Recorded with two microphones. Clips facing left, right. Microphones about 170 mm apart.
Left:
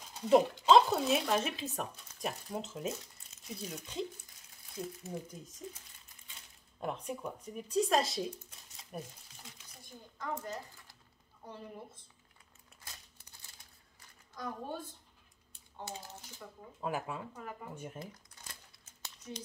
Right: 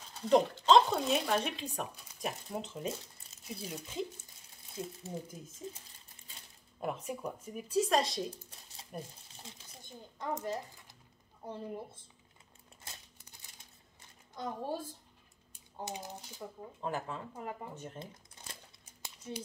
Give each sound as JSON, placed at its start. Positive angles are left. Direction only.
{"t": 0.0, "sound": "speech", "side_deg": 10}
{"t": 4.7, "sound": "a woman's voice", "side_deg": -25}
{"t": 6.8, "sound": "speech", "side_deg": -5}
{"t": 9.4, "sound": "a sound", "side_deg": -25}
{"t": 11.4, "sound": "a woman's voice", "side_deg": -30}
{"t": 13.3, "sound": "a sound", "side_deg": -15}
{"t": 14.3, "sound": "speech", "side_deg": -30}
{"t": 15.8, "sound": "speech", "side_deg": -15}
{"t": 16.8, "sound": "speech", "side_deg": 10}
{"t": 17.3, "sound": "a woman's voice", "side_deg": -25}
{"t": 17.9, "sound": "shuffling cards", "side_deg": -25}